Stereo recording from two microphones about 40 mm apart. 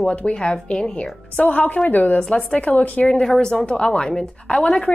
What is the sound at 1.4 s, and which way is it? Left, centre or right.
Speech, left.